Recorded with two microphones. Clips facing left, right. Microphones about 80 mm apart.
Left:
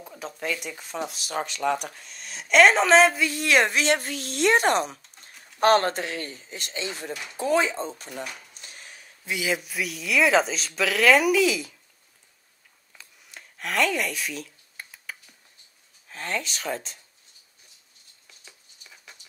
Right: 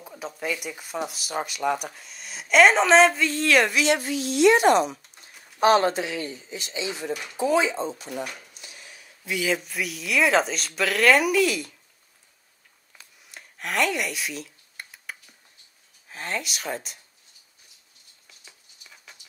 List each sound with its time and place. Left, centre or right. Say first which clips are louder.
0.0 s speech: right 1 dB; centre
3.3 s speech: right 1 dB; centre
3.6 s speech: right 1 dB; left
8.5 s a sound: even; left
9.4 s speech: right 1 dB; centre
13.3 s a sound: even; centre
16.1 s speech: even; centre